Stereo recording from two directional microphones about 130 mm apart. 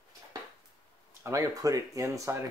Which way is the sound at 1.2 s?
25° right (ahead or behind).